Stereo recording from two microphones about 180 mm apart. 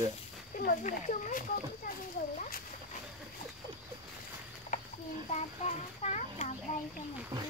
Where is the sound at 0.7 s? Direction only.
45° left (ahead or behind).